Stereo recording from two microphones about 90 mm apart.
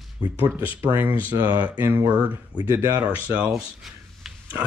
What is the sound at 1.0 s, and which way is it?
Speech, 20° right (ahead or behind).